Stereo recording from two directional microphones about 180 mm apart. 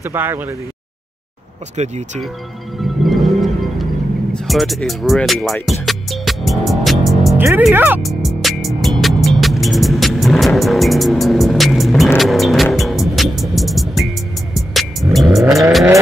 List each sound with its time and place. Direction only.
0.0 s speech: 10° right (ahead or behind)
1.8 s speech: 40° right (ahead or behind)
2.8 s music: centre (ahead or behind)
7.3 s speech: 10° right (ahead or behind)
8.0 s music: centre (ahead or behind)
12.2 s car: centre (ahead or behind)
12.7 s music: centre (ahead or behind)
15.3 s car: centre (ahead or behind)